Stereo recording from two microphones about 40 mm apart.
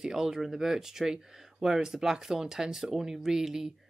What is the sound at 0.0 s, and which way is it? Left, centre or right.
Speech, centre.